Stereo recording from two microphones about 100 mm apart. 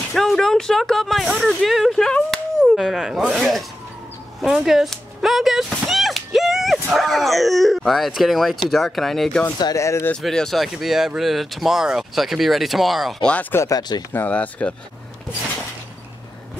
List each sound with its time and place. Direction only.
0.1 s speech: centre (ahead or behind)
2.6 s chop: centre (ahead or behind)
3.3 s speech: centre (ahead or behind)
9.8 s speech: 30° left (ahead or behind)
10.2 s speech: 5° left (ahead or behind)
13.3 s speech: 15° left (ahead or behind)
13.6 s speech: 40° left (ahead or behind)
14.1 s speech: 15° left (ahead or behind)